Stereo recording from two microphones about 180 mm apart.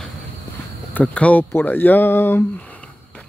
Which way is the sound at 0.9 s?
5° left (ahead or behind).